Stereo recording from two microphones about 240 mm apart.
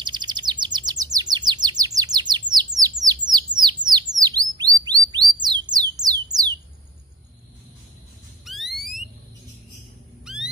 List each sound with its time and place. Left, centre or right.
0.0 s chirp: centre
8.5 s alarm: centre
10.2 s a sound: centre